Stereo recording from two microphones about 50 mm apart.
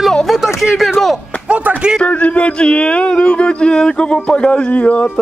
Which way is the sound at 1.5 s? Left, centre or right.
Right.